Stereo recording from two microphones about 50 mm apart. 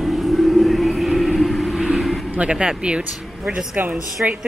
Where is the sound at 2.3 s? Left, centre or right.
Right.